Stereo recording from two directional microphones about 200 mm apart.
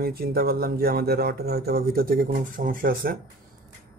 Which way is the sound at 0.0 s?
50° right (ahead or behind).